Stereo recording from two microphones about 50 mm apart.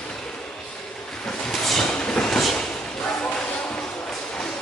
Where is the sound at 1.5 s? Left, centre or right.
Centre.